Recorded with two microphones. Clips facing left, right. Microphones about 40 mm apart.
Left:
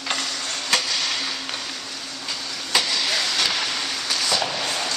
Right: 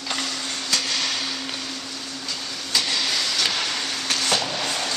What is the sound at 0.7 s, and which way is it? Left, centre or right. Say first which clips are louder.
Vehicle: left 3 dB; left.